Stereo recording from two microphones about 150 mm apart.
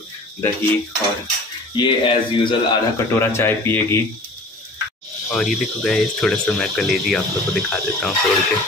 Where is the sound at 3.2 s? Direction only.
15° left (ahead or behind).